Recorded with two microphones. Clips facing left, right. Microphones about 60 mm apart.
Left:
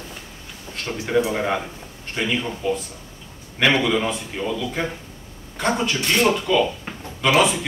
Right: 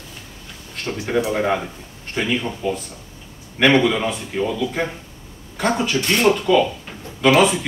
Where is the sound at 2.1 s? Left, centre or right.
Centre.